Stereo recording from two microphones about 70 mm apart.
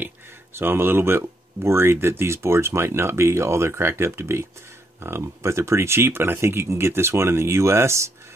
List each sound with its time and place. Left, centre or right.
0.0 s speech: right